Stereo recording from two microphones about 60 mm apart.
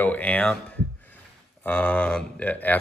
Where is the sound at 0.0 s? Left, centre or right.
Left.